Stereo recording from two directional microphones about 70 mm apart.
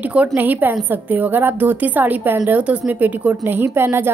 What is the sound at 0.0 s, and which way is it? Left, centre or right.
A woman's voice, centre.